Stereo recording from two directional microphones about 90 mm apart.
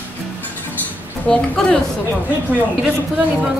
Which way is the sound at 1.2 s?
10° left (ahead or behind).